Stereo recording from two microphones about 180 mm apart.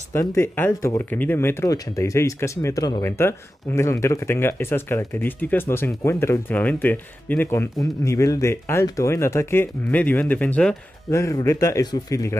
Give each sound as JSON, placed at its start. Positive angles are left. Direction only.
{"t": 0.1, "sound": "speech", "side_deg": 15}